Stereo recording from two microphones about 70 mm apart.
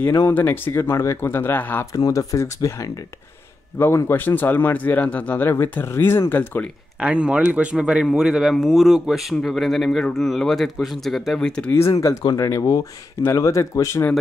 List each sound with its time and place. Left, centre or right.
0.3 s speech: left
1.9 s speech: left
3.9 s speech: left
5.5 s speech: left
7.0 s speech: centre
11.3 s speech: centre
11.9 s speech: left